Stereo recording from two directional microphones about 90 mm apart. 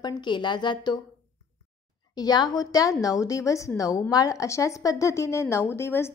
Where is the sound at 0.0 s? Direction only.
55° left (ahead or behind).